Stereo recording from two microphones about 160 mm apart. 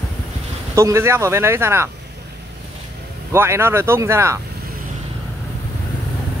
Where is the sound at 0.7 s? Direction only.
15° right (ahead or behind).